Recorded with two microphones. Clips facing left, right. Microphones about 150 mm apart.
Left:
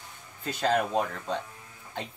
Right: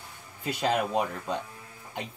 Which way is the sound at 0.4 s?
10° right (ahead or behind).